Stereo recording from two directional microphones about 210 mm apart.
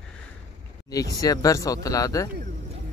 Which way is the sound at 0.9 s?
15° left (ahead or behind).